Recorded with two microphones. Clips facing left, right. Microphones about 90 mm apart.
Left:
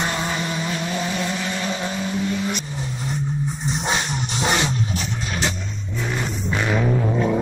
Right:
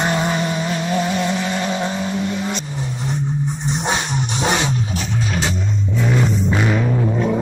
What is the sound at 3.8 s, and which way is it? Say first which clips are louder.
Vehicle: right 3 dB; 20° right (ahead or behind).